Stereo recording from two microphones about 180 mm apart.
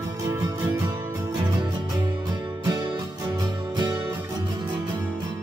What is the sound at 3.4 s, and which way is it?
Music, 20° right (ahead or behind).